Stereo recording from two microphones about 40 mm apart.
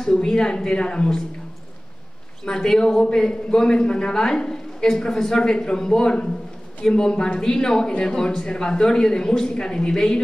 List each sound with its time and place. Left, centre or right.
0.0 s a man's voice: centre
2.4 s a man's voice: centre